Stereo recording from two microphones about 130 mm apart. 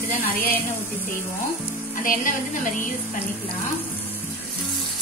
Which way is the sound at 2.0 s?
90° left.